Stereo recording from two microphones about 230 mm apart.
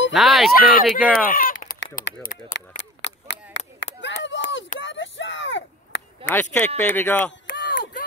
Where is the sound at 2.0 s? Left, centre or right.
Left.